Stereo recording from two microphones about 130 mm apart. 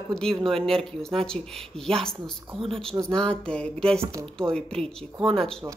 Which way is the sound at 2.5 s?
45° right (ahead or behind).